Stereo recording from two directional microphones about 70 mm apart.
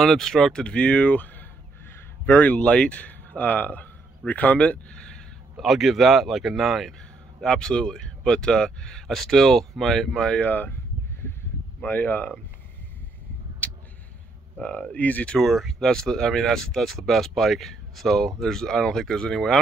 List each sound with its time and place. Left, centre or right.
0.0 s speech: centre
5.6 s speech: centre
11.8 s speech: left
15.0 s speech: left
15.3 s speech: centre